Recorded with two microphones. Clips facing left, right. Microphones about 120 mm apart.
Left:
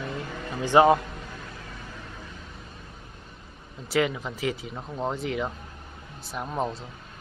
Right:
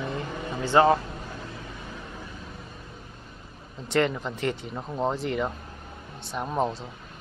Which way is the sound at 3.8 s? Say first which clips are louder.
Right 1 dB; 5° left (ahead or behind).